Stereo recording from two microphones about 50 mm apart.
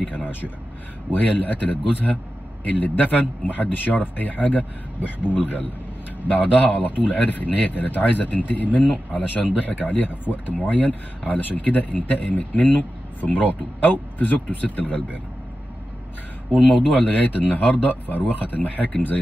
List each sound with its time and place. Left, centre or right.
0.0 s speech: left
17.0 s speech: left